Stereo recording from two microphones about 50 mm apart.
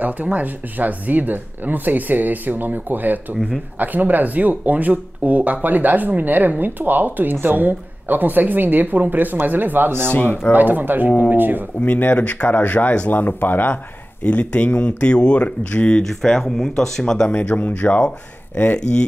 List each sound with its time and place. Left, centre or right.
0.0 s speech: right
10.1 s speech: left
10.5 s speech: right
11.8 s speech: left
14.2 s speech: left
16.0 s speech: centre
17.3 s speech: left